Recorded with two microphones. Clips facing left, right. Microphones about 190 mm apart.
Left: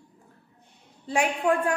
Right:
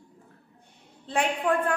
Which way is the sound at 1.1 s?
10° left (ahead or behind).